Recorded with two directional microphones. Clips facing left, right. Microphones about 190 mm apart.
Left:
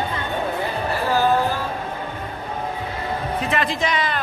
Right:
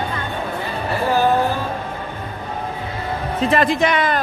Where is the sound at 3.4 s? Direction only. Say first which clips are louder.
Right 8 dB; 35° right (ahead or behind).